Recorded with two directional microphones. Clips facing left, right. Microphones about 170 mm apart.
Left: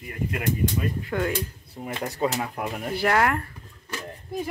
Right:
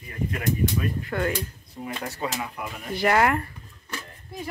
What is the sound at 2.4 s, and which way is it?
Speech, 45° left (ahead or behind).